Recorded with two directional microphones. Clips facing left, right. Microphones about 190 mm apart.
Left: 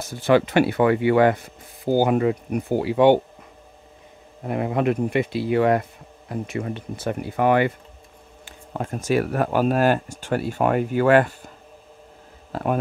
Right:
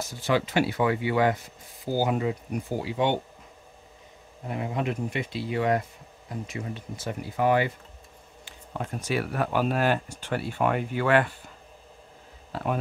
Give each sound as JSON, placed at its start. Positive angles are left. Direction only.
{"t": 0.1, "sound": "speech", "side_deg": 60}
{"t": 4.5, "sound": "speech", "side_deg": 60}
{"t": 8.5, "sound": "speech", "side_deg": 45}
{"t": 12.5, "sound": "speech", "side_deg": 45}